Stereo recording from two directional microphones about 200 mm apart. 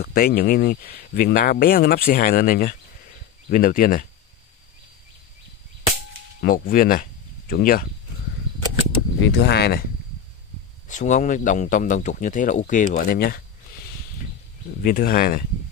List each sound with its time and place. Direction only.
0.0 s speech: 45° left (ahead or behind)
6.4 s speech: 45° left (ahead or behind)
9.2 s speech: 55° left (ahead or behind)
10.9 s speech: 40° left (ahead or behind)
14.8 s speech: 45° left (ahead or behind)